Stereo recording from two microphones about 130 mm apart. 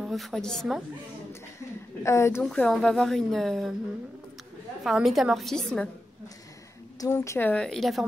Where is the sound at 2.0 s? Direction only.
20° left (ahead or behind).